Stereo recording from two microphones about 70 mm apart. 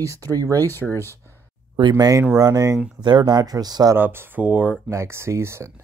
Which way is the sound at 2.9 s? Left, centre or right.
Right.